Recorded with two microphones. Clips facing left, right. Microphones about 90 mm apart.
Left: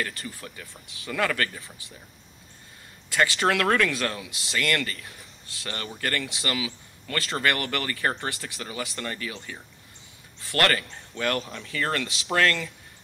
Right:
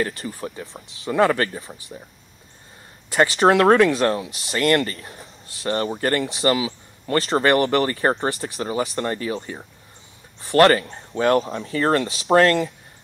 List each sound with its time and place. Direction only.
0.0 s speech: 30° right (ahead or behind)
3.1 s speech: 30° right (ahead or behind)